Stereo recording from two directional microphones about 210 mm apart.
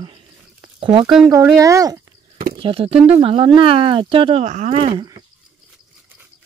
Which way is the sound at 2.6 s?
25° right (ahead or behind).